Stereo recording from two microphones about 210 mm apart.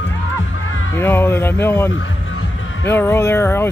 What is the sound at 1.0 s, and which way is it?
Speech, 10° left (ahead or behind).